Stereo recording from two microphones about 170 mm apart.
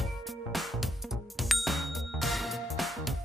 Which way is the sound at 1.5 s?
Centre (ahead or behind).